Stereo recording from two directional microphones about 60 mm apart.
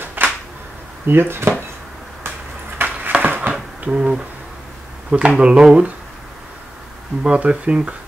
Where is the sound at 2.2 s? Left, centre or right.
Right.